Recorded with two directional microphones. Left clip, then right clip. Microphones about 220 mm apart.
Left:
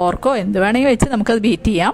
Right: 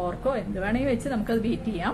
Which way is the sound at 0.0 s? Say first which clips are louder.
Left 11 dB; 50° left (ahead or behind).